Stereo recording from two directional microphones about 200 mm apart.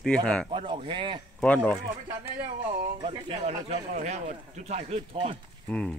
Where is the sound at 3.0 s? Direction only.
30° right (ahead or behind).